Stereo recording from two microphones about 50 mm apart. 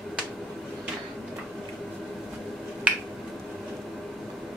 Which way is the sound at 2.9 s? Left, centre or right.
Right.